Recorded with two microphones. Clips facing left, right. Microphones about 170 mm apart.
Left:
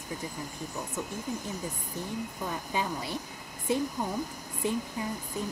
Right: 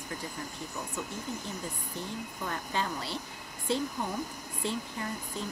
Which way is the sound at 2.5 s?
10° left (ahead or behind).